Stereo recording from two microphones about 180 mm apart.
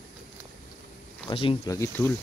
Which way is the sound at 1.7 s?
15° left (ahead or behind).